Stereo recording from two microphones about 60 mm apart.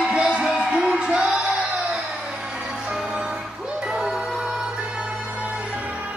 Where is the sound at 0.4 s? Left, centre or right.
Centre.